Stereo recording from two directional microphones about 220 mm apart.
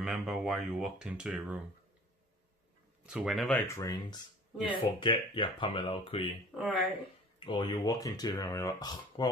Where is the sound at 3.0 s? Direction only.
5° right (ahead or behind).